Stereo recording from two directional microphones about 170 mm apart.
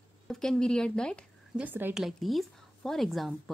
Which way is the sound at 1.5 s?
10° right (ahead or behind).